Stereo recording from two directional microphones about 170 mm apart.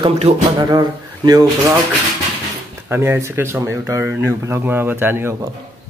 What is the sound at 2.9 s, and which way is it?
Speech, 15° right (ahead or behind).